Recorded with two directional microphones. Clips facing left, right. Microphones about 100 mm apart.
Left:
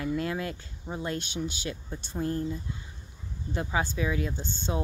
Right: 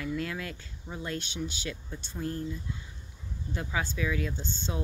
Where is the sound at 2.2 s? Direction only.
35° left (ahead or behind).